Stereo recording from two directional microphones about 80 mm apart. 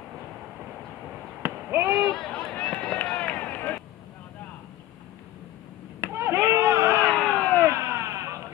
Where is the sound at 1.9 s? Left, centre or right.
Centre; by 3.7 s left.